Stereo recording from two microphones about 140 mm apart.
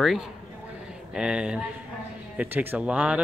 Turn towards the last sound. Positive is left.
turn(degrees=-10)  # may be behind; listen again after turning